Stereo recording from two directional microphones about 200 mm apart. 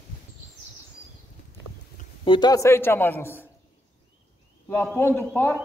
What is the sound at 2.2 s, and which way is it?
A man's voice, 20° left (ahead or behind).